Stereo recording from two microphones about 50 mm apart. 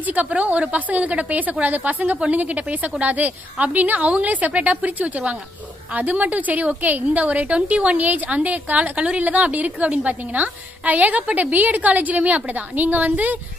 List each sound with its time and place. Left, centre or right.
0.0 s a woman's voice: right